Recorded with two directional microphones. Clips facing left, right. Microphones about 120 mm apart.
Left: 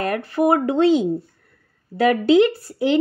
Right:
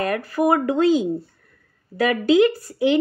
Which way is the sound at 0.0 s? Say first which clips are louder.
Left 1 dB; 30° left (ahead or behind).